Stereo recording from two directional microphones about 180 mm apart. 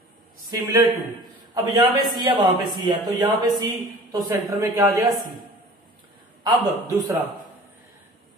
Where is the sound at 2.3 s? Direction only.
25° right (ahead or behind).